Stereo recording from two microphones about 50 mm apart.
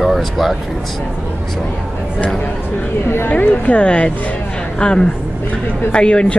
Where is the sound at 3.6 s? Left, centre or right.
Left.